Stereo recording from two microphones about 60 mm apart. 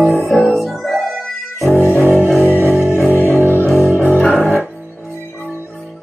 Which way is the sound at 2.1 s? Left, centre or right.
Left.